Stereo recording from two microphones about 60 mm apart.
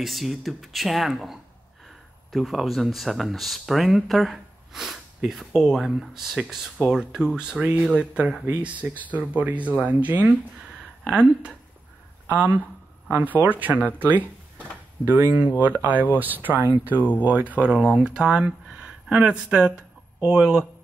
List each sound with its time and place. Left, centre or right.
0.0 s speech: centre
8.5 s speech: right
12.3 s speech: right